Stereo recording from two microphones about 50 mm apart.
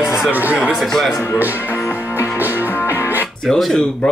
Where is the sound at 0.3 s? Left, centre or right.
Right.